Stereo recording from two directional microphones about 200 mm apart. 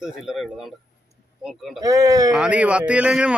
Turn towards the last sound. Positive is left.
turn(degrees=-5)  # may be behind; listen again after turning